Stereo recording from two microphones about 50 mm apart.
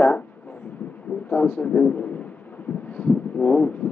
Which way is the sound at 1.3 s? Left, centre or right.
Left.